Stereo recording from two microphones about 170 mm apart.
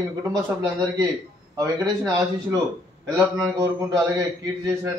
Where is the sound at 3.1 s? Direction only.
20° right (ahead or behind).